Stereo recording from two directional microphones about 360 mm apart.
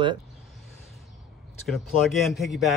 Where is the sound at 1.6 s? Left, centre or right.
Centre.